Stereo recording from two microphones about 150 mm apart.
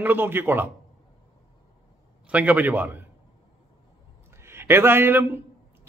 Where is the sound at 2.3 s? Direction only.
10° right (ahead or behind).